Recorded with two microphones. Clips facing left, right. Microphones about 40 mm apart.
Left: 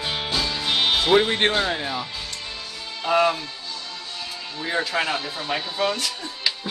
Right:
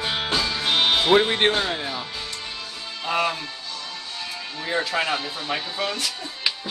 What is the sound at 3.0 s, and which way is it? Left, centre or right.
Music, centre.